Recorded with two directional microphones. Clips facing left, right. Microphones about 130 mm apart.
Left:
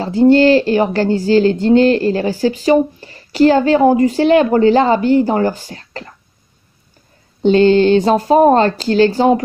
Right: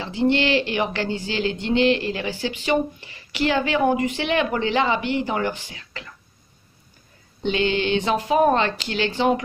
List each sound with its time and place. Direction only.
0.0 s speech: 40° left (ahead or behind)
7.4 s speech: 45° left (ahead or behind)